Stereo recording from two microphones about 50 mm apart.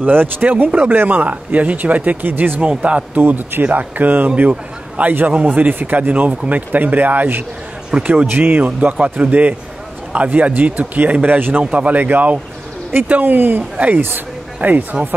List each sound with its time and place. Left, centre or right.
0.0 s a man's voice: right
7.9 s speech: centre
8.3 s speech: right
11.6 s speech: right